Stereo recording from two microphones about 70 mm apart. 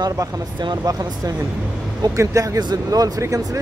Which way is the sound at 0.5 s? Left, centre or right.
Right.